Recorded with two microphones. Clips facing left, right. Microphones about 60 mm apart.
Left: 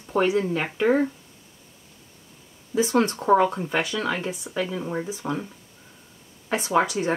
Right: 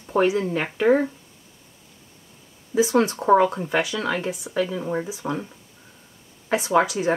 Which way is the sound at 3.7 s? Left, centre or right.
Centre.